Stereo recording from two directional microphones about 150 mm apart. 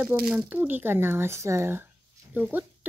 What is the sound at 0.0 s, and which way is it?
Speech, 5° right (ahead or behind).